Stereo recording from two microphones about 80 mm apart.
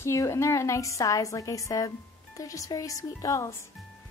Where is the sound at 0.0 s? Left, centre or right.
Left.